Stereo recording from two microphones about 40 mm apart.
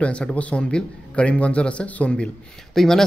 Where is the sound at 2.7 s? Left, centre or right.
Centre.